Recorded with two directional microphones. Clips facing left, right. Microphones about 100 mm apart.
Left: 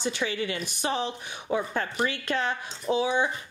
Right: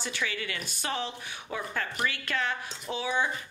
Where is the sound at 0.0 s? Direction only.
25° left (ahead or behind).